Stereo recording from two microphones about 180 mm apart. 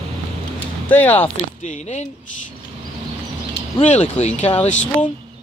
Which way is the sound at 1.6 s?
40° left (ahead or behind).